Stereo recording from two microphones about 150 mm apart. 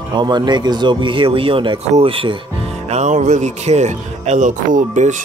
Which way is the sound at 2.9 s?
50° right (ahead or behind).